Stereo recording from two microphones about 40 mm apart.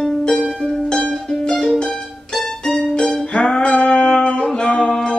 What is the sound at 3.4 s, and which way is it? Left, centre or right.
Music, left.